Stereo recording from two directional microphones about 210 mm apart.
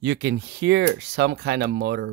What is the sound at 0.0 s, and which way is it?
Speech, 55° right (ahead or behind).